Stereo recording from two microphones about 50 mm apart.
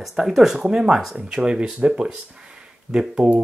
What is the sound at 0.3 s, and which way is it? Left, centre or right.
Speech, centre.